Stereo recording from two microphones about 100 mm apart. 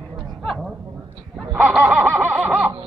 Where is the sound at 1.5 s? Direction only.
15° right (ahead or behind).